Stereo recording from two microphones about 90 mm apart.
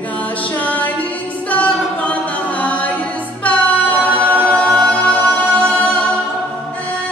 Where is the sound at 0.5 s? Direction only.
20° left (ahead or behind).